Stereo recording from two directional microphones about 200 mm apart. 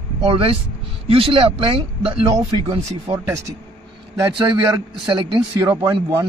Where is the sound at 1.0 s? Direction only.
25° right (ahead or behind).